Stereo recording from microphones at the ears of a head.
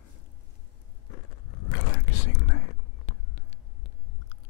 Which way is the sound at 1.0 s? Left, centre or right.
Left.